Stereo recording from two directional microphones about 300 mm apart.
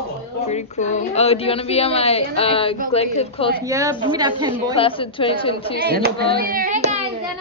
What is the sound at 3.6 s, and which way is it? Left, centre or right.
Speech, centre.